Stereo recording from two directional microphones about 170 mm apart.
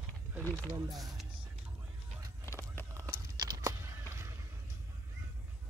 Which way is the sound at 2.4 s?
15° left (ahead or behind).